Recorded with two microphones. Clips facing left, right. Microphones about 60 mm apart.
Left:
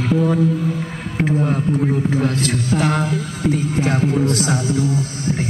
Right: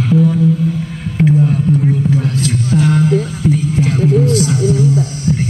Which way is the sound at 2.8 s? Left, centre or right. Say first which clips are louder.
Right 6 dB; left.